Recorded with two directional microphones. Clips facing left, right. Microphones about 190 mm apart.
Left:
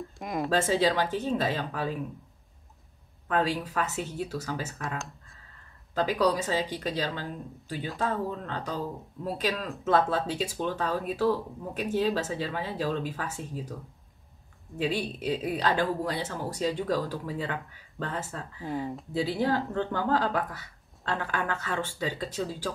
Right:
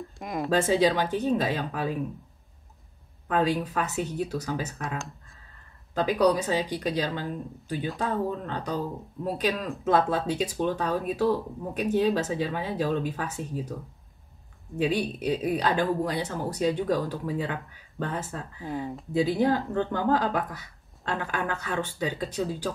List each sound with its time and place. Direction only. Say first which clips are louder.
0.0 s speech: even; centre (ahead or behind)
0.5 s speech: right 3 dB; 15° right (ahead or behind)
3.3 s speech: right 3 dB; 15° right (ahead or behind)
4.8 s speech: right 1 dB; centre (ahead or behind)
5.9 s speech: right 3 dB; 15° right (ahead or behind)
14.8 s speech: right 3 dB; 15° right (ahead or behind)
18.7 s speech: even; centre (ahead or behind)
19.1 s speech: right 4 dB; 15° right (ahead or behind)